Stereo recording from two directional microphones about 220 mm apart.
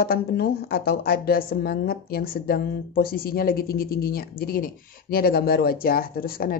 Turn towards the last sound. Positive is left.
turn(degrees=40)  # may be behind; listen again after turning